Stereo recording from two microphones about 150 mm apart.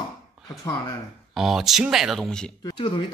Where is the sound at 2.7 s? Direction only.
35° left (ahead or behind).